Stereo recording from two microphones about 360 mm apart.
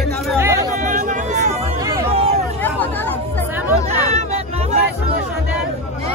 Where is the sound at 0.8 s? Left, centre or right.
Right.